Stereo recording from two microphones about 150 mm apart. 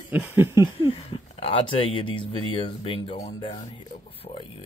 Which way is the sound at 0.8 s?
35° left (ahead or behind).